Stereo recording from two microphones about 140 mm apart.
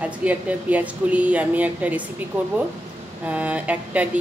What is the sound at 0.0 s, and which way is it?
Speech, 10° right (ahead or behind).